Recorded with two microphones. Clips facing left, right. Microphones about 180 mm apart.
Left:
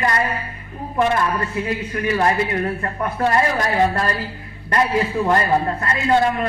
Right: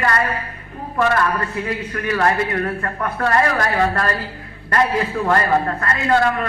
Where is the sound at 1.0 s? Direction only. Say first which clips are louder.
Even; 20° left (ahead or behind).